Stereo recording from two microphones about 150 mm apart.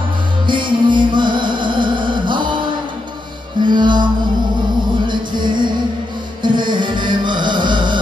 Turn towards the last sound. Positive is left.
turn(degrees=-30)  # may be behind; listen again after turning